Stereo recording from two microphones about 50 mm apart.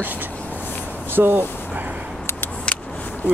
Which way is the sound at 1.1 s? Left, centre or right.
Right.